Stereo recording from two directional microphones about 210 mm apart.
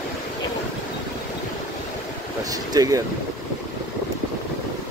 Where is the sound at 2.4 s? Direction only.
15° right (ahead or behind).